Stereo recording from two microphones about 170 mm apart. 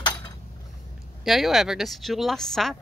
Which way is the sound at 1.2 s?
Centre (ahead or behind).